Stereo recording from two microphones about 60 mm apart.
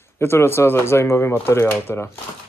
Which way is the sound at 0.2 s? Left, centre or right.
Left.